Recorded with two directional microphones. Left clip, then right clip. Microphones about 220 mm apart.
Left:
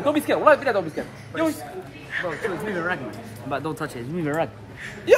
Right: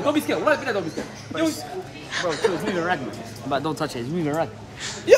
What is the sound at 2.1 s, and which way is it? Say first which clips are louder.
Speech: right 4 dB; 15° right (ahead or behind).